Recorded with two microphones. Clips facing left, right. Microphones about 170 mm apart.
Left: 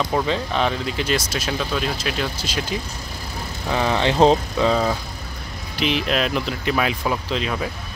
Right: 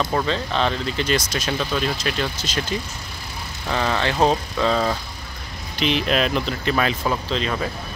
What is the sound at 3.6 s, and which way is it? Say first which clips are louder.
Speech: left 2 dB; 15° left (ahead or behind).